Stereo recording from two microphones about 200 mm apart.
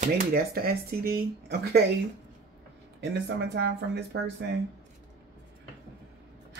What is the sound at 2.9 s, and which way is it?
Speech, 60° right (ahead or behind).